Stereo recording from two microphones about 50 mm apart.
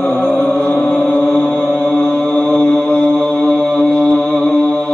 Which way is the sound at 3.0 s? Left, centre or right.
Centre.